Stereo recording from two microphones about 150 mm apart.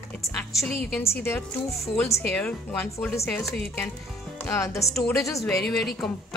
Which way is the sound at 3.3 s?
5° left (ahead or behind).